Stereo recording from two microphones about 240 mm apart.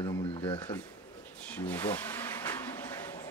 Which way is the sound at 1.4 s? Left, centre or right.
Centre.